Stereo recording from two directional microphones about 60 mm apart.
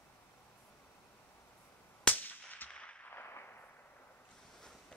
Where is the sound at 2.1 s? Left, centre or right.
Left.